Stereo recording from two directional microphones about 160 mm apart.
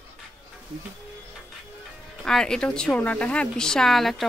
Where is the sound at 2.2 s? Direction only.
5° left (ahead or behind).